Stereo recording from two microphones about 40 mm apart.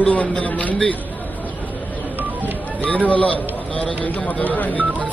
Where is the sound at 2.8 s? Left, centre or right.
Left.